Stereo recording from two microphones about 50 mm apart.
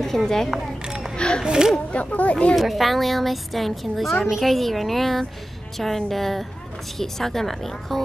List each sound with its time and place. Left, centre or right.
0.3 s speech: centre
0.8 s a sound: centre
1.1 s a sound: centre
1.4 s speech: centre
1.9 s speech: left
2.5 s a woman's voice: centre